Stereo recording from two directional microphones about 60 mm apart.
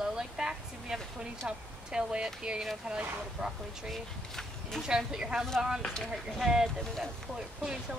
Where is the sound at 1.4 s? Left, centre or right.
Centre.